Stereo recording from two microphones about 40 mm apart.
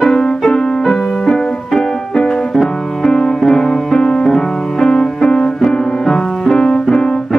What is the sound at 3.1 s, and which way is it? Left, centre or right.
Music, centre.